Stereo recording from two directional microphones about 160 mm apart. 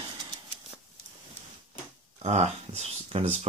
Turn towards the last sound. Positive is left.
turn(degrees=-40)  # may be behind; listen again after turning